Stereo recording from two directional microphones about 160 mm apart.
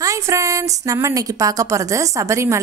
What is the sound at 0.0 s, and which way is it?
A woman's voice, 20° right (ahead or behind).